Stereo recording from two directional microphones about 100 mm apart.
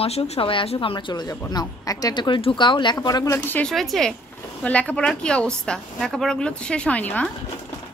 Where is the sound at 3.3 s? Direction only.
20° left (ahead or behind).